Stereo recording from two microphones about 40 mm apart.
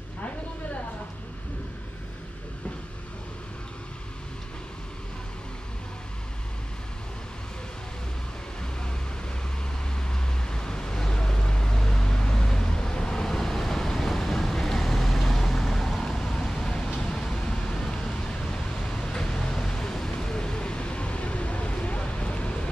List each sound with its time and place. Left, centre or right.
10.5 s vehicle: centre